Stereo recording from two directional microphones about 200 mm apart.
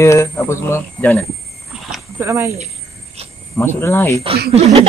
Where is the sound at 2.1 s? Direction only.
15° right (ahead or behind).